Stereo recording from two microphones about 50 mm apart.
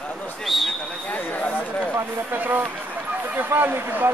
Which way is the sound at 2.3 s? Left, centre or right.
Right.